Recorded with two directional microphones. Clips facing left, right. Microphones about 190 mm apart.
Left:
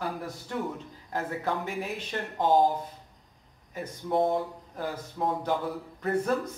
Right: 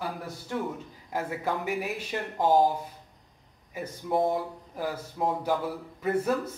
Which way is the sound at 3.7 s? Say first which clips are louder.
Even; 5° right (ahead or behind).